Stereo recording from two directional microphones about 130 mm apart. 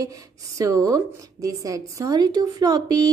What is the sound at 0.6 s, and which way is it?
A woman's voice, 25° right (ahead or behind).